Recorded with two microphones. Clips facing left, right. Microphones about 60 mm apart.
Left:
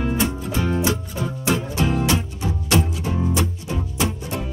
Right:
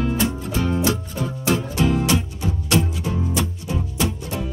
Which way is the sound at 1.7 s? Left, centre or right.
Left.